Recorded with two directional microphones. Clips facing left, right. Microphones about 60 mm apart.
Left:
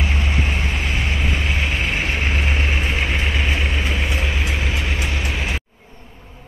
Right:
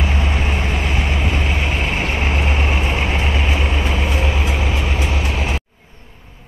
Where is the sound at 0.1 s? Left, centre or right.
Centre.